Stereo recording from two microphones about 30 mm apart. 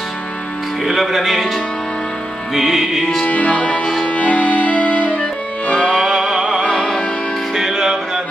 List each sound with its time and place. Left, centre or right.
1.0 s music: centre
2.5 s music: centre
3.3 s music: left
5.7 s music: left
6.3 s music: right
7.5 s music: centre